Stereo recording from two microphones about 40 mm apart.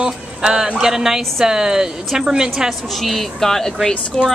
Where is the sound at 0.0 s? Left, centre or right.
Centre.